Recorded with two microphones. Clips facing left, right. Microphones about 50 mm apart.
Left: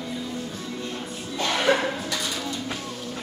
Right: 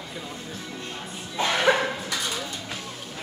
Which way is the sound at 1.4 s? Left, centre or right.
Centre.